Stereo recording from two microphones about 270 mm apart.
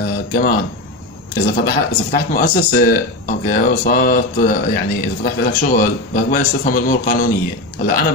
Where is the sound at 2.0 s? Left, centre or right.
Left.